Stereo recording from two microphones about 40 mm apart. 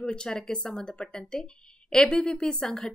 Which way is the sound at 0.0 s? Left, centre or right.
Centre.